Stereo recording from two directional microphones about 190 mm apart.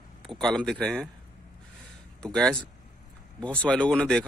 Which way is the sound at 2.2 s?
5° left (ahead or behind).